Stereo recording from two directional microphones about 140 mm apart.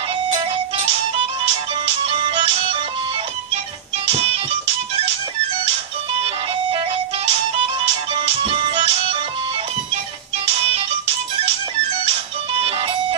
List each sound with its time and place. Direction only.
2.0 s music: 40° right (ahead or behind)
8.5 s music: 35° right (ahead or behind)